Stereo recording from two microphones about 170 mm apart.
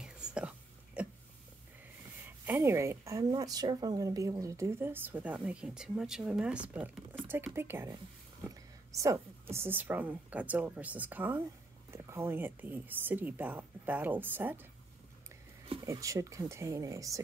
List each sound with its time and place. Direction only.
0.0 s whispering: 5° right (ahead or behind)
2.2 s a woman's voice: 10° right (ahead or behind)
15.7 s speech: 20° right (ahead or behind)